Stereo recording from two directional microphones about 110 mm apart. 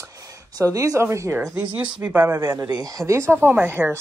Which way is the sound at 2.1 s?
15° right (ahead or behind).